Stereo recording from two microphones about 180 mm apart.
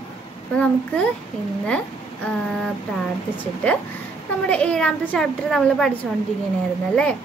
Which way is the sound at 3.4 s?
10° left (ahead or behind).